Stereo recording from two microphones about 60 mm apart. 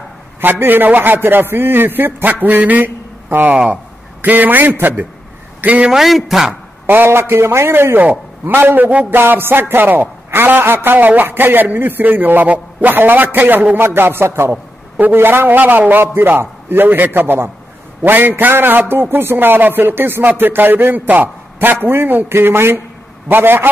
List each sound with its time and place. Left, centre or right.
0.4 s a man's voice: right
2.4 s a sound: right
4.2 s a man's voice: right
5.9 s a man's voice: centre
6.9 s a man's voice: right
15.0 s a man's voice: right